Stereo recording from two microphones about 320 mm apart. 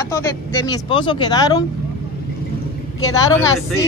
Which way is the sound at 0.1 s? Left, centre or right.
Centre.